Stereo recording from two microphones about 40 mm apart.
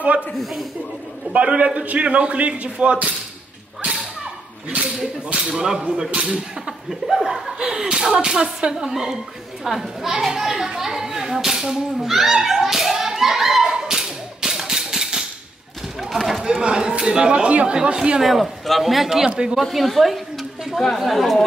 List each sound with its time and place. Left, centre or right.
0.4 s a man's voice: centre
1.3 s a man's voice: right
4.6 s speech: right
7.5 s speech: right
12.1 s hands: centre
16.0 s a man's voice: centre
16.6 s speech: right
18.2 s a man's voice: centre